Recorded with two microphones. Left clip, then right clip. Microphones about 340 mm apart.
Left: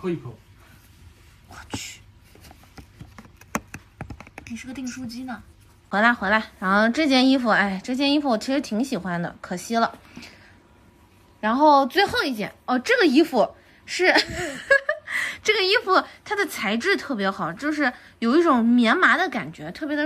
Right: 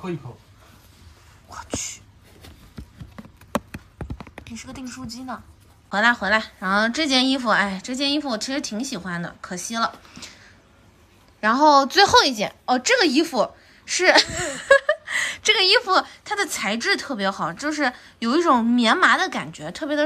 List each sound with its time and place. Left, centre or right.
4.0 s a sound: centre
5.9 s a woman's voice: centre
11.4 s a woman's voice: centre